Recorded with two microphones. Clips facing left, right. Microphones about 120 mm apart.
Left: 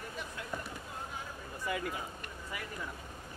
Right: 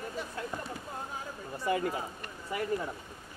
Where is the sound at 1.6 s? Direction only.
35° right (ahead or behind).